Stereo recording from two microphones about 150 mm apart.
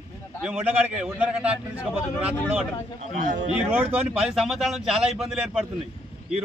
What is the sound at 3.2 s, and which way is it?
Speech, 60° right (ahead or behind).